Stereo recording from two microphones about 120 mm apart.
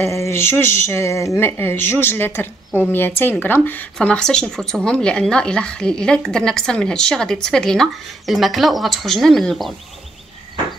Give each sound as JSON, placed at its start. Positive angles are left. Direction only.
{"t": 0.0, "sound": "speech", "side_deg": 25}